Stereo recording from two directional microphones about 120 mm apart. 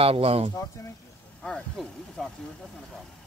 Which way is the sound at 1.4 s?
5° left (ahead or behind).